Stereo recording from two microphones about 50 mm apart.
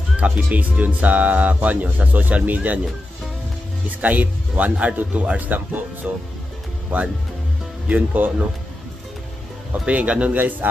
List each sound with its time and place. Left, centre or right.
0.2 s speech: right
4.0 s speech: right
7.9 s speech: right
9.7 s speech: right
10.3 s speech: right